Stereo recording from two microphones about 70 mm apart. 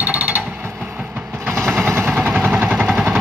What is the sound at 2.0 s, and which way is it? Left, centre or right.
Vehicle, centre.